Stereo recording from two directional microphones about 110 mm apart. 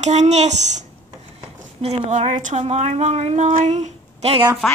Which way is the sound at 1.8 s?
80° right.